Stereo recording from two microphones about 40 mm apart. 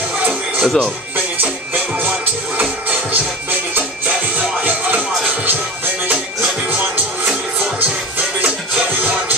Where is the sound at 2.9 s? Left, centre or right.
Right.